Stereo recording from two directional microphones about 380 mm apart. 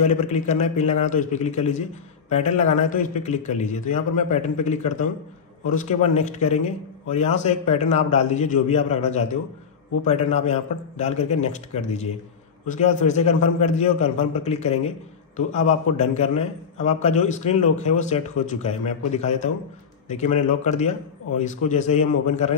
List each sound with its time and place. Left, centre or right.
0.0 s a man's voice: centre
20.1 s a man's voice: centre